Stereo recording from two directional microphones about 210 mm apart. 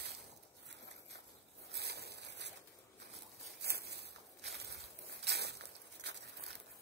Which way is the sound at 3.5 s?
50° right (ahead or behind).